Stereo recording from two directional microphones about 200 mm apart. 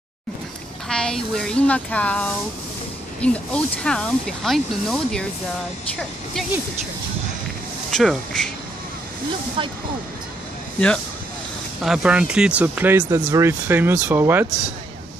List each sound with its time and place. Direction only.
0.8 s speech: 5° left (ahead or behind)
7.9 s speech: centre (ahead or behind)
9.6 s speech: 25° right (ahead or behind)
11.8 s speech: 5° right (ahead or behind)